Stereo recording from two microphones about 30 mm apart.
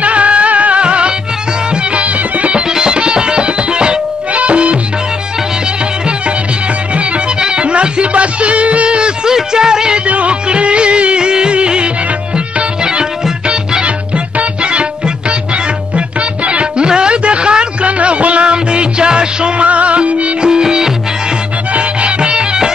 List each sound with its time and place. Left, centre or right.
0.0 s music: right
2.7 s music: right
4.3 s music: right
7.3 s music: right
8.9 s music: right
9.9 s music: right
13.8 s music: right
16.4 s music: right
16.8 s a sound: right
17.8 s music: right
19.6 s music: right
20.4 s music: right
21.7 s music: right